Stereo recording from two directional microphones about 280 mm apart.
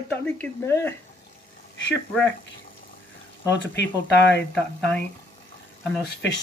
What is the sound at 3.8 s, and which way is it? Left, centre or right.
Speech, left.